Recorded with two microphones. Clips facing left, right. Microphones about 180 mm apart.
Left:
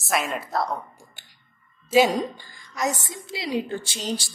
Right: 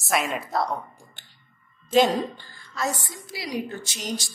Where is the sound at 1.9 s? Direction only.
10° left (ahead or behind).